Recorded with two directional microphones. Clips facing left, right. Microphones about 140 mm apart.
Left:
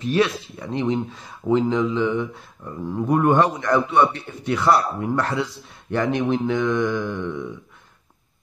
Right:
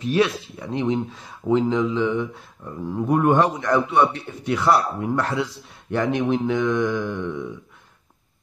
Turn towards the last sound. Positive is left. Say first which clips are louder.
# even
turn(degrees=-5)  # may be behind; listen again after turning